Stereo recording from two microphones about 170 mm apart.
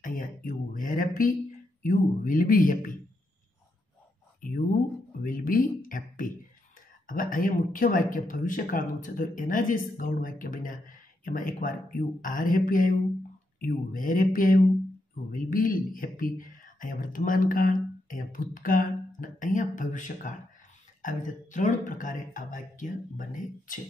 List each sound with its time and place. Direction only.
0.0 s a sound: 55° left (ahead or behind)
1.8 s speech: 55° left (ahead or behind)
4.4 s speech: 55° left (ahead or behind)